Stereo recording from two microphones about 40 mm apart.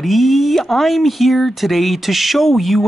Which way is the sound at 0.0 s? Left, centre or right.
Centre.